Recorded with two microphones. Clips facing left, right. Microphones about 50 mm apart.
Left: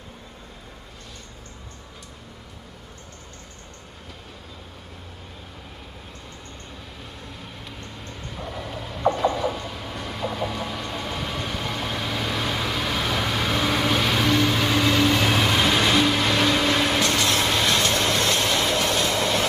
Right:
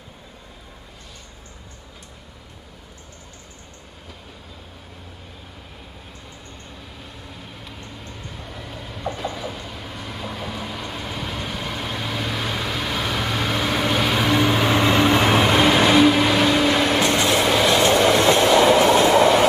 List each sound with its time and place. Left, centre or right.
7.0 s vehicle: centre
17.0 s train: centre